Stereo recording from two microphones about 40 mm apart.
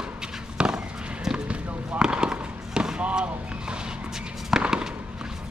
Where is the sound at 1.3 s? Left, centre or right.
Right.